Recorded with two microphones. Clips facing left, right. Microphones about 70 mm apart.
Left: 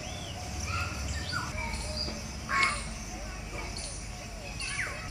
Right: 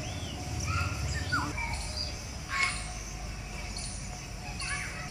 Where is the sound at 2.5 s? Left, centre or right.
Left.